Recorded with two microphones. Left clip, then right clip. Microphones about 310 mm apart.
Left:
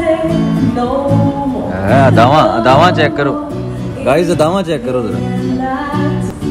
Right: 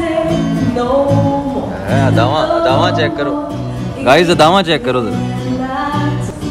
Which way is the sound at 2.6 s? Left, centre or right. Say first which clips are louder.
Left 3 dB; centre.